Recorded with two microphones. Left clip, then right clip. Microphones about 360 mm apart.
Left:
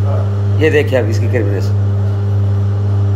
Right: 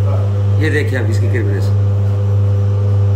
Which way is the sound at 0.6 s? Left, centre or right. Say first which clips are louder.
Left 7 dB; centre.